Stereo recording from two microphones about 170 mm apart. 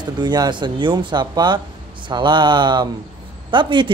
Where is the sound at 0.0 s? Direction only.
25° right (ahead or behind).